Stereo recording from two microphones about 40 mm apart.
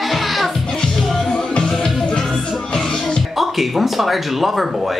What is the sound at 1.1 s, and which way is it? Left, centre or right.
Music, centre.